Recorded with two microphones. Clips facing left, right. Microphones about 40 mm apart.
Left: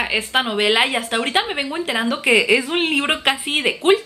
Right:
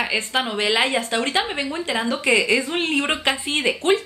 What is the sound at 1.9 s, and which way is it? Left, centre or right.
Speech, centre.